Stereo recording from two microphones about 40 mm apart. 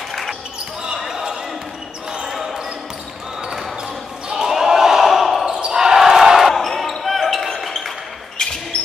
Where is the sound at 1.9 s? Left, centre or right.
Right.